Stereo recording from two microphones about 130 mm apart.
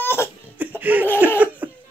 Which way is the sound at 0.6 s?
15° right (ahead or behind).